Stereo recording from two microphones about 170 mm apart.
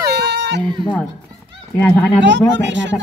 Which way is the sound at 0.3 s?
90° right.